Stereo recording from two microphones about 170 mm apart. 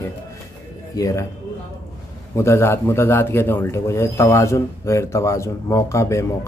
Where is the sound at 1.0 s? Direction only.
20° left (ahead or behind).